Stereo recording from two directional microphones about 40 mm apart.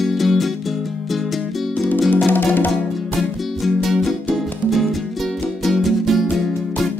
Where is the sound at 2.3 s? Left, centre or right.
Left.